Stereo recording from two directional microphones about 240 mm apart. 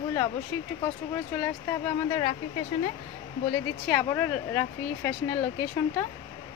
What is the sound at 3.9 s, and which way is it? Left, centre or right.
Speech, centre.